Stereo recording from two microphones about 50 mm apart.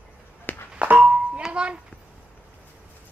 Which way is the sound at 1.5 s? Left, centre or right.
Centre.